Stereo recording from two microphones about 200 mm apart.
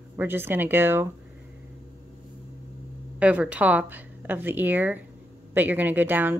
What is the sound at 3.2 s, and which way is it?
A woman's voice, 5° right (ahead or behind).